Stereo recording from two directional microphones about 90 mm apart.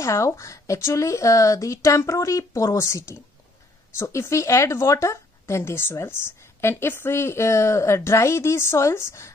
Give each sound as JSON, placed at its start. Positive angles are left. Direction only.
{"t": 0.0, "sound": "speech", "side_deg": 35}